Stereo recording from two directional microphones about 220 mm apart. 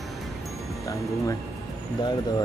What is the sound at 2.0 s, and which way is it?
Speech, 20° left (ahead or behind).